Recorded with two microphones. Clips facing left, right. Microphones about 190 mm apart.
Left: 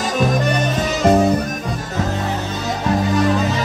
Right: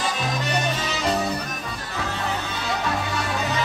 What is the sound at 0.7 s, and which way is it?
Music, 50° left (ahead or behind).